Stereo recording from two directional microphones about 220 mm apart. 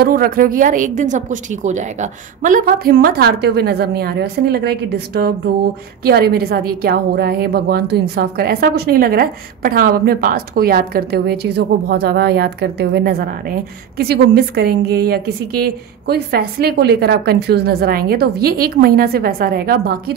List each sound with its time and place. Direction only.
0.0 s a woman's voice: 45° right (ahead or behind)